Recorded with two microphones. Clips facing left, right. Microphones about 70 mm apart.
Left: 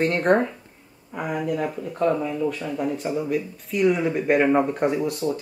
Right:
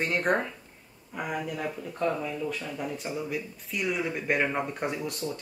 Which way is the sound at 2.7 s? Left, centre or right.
Centre.